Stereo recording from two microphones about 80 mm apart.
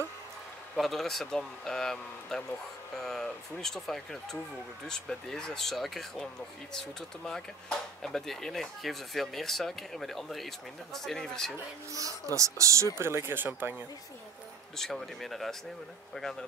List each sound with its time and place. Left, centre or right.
0.7 s speech: centre
11.9 s speech: right
14.8 s speech: centre